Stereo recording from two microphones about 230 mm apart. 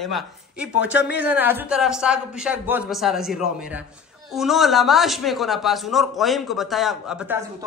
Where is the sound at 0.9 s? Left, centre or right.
Left.